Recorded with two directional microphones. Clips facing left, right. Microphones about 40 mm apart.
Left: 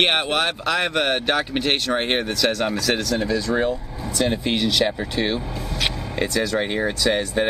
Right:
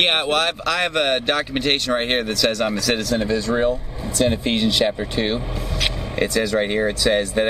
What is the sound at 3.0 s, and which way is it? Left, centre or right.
Speech, centre.